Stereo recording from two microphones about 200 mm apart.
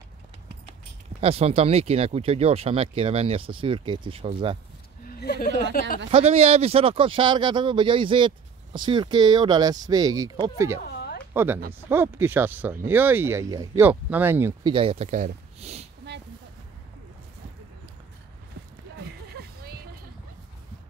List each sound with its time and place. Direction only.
1.2 s speech: 30° right (ahead or behind)
5.2 s speech: 55° left (ahead or behind)
6.0 s speech: 30° right (ahead or behind); by 14.7 s 10° right (ahead or behind)
14.7 s speech: 25° right (ahead or behind)